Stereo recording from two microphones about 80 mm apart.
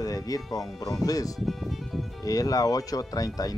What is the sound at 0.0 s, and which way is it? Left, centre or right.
Speech, left.